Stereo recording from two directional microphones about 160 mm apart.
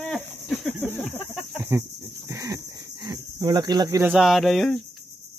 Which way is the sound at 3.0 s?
25° right (ahead or behind).